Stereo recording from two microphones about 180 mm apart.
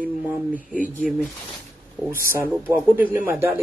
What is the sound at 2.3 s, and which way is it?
Speech, 10° right (ahead or behind).